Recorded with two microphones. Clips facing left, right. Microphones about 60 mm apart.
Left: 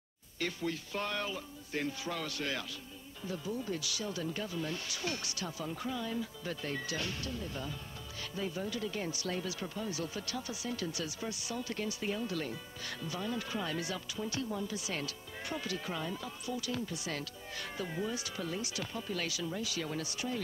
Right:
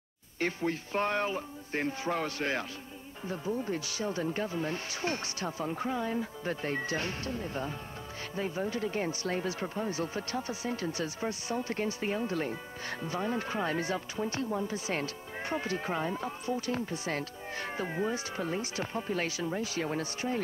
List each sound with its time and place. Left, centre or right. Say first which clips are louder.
0.4 s speech: right 5 dB; right